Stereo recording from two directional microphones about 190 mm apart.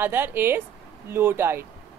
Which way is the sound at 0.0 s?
10° right (ahead or behind).